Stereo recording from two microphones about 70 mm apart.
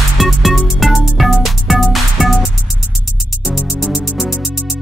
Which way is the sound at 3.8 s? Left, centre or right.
Centre.